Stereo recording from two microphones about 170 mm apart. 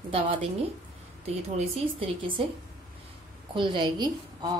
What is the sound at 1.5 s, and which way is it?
Speech, 30° right (ahead or behind).